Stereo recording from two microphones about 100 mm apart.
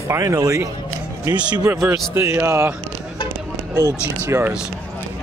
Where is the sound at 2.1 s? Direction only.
25° right (ahead or behind).